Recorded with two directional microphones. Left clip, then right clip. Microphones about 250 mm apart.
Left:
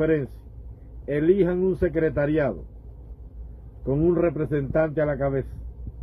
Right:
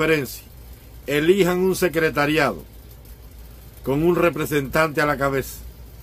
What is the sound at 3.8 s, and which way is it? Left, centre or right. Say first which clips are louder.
A man's voice: right 3 dB; centre.